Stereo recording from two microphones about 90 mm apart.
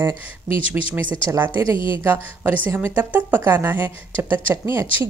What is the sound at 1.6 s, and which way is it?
Speech, 70° left (ahead or behind).